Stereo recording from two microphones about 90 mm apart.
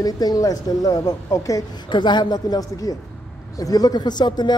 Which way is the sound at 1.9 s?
55° left (ahead or behind).